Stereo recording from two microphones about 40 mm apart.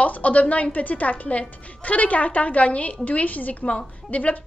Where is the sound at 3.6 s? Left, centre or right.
Left.